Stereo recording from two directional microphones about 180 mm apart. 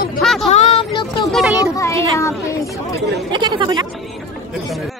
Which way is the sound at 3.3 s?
25° right (ahead or behind).